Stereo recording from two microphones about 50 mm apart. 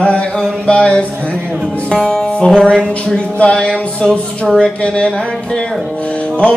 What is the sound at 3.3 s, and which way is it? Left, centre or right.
Speech, left.